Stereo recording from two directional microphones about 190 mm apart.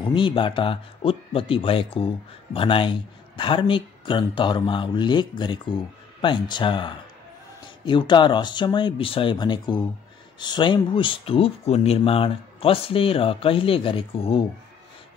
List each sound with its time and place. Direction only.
0.0 s speech: 25° left (ahead or behind)